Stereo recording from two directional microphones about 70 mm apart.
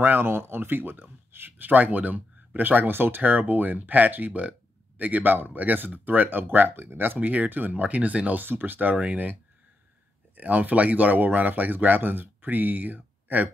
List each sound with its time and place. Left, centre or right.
0.0 s speech: right